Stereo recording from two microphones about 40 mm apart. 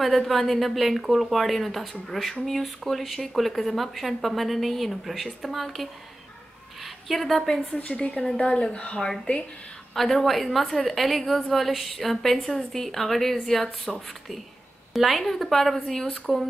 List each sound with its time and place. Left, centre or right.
0.0 s speech: centre
6.8 s a sound: centre
7.8 s a woman's voice: left
8.9 s speech: centre
9.9 s speech: centre